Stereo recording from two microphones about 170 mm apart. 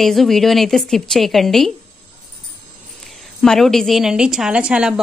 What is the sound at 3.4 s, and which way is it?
A woman's voice, centre (ahead or behind).